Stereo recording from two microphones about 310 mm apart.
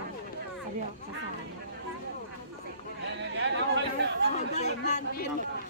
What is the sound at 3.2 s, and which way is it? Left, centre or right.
Chatter, right.